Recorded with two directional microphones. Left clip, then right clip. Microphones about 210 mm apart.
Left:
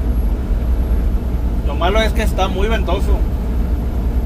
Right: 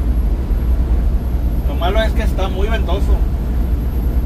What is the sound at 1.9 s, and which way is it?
Vehicle, 65° left (ahead or behind).